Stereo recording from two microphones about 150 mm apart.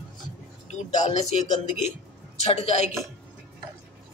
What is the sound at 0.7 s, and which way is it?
A woman's voice, 50° left (ahead or behind).